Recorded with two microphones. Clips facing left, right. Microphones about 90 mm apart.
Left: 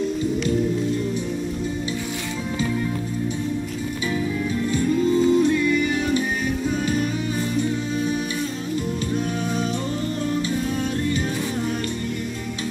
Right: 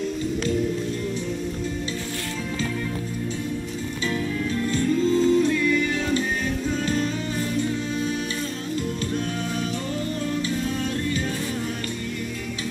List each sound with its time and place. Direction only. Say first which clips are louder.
4.6 s music: left 1 dB; 15° left (ahead or behind)